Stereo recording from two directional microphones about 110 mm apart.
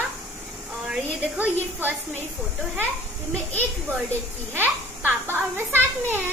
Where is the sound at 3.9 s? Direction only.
20° right (ahead or behind).